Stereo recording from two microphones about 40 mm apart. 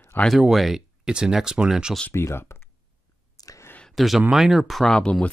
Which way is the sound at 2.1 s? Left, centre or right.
Left.